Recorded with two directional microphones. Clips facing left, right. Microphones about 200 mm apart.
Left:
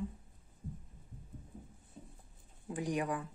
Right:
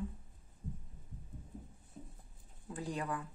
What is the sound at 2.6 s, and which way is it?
Speech, 15° left (ahead or behind).